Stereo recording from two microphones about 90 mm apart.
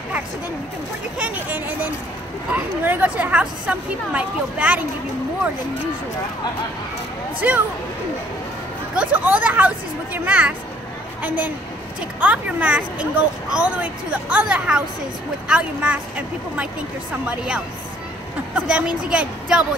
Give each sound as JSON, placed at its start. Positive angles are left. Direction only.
{"t": 1.1, "sound": "speech", "side_deg": -20}
{"t": 7.4, "sound": "speech", "side_deg": -20}
{"t": 8.9, "sound": "speech", "side_deg": -15}
{"t": 18.5, "sound": "speech", "side_deg": -10}